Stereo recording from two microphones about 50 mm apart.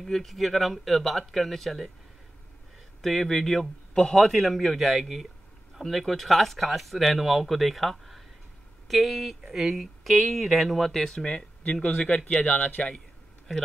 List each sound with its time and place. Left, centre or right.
0.0 s speech: centre
3.0 s speech: centre; by 12.9 s left